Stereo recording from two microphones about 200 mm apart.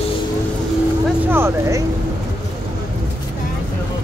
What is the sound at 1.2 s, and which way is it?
Vehicle, 10° right (ahead or behind).